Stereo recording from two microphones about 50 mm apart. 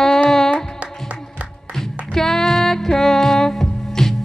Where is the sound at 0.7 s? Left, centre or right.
Right.